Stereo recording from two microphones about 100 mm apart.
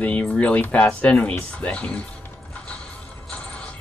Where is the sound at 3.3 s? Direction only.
15° left (ahead or behind).